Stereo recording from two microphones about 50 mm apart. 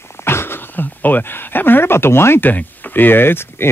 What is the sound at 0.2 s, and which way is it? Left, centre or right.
Speech, left.